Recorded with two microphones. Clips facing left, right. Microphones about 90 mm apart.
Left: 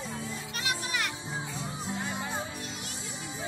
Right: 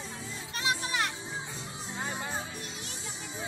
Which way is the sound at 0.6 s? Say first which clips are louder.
Right 3 dB; 30° right (ahead or behind).